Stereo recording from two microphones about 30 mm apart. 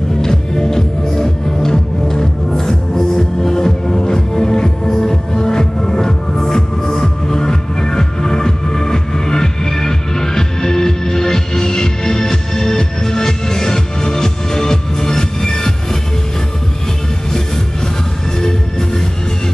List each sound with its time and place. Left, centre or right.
0.2 s music: centre
18.4 s music: centre